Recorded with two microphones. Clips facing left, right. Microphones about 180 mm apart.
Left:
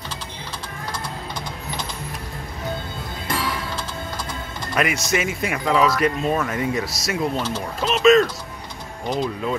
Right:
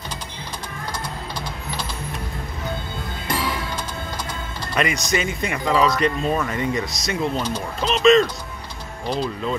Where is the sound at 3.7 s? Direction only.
20° right (ahead or behind).